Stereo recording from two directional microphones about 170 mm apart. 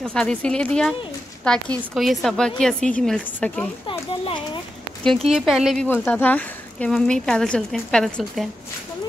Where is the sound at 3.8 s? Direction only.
30° left (ahead or behind).